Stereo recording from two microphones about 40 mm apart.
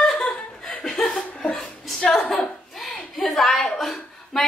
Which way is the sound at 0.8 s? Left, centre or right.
Centre.